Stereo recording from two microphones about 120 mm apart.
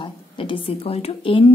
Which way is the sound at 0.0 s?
45° left (ahead or behind).